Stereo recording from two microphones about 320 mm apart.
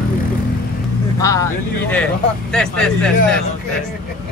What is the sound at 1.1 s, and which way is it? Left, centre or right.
Speech, centre.